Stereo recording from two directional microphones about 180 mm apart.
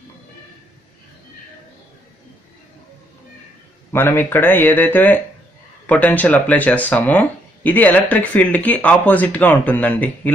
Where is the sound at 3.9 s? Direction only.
10° left (ahead or behind).